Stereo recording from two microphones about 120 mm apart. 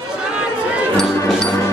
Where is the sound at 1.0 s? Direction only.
5° left (ahead or behind).